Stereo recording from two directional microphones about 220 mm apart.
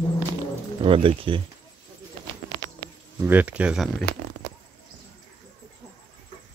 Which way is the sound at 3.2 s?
10° right (ahead or behind).